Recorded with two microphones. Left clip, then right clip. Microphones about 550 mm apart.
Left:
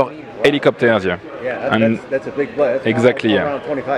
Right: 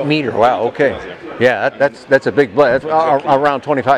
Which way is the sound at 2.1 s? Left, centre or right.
Right.